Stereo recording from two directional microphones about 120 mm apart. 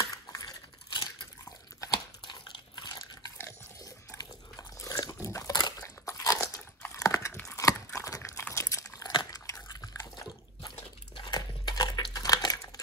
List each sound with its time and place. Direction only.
0.0 s a sound: 30° left (ahead or behind)
1.8 s crunch: 35° left (ahead or behind)
3.3 s biting: 25° left (ahead or behind)
6.8 s a sound: 25° left (ahead or behind)
9.8 s water: 30° left (ahead or behind)
11.2 s crumpling: 35° left (ahead or behind)